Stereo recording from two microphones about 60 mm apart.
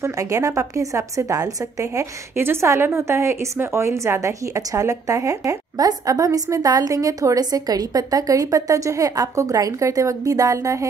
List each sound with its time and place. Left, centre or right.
0.0 s a woman's voice: right
2.3 s a woman's voice: right